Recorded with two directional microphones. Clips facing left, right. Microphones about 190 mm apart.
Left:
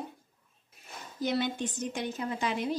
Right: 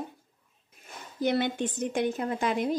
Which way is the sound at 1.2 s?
60° right (ahead or behind).